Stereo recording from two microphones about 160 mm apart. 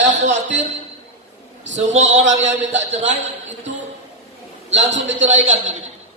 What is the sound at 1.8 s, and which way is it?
Speech, 45° right (ahead or behind).